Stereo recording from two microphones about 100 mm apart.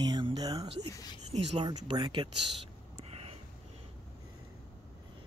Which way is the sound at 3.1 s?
80° right.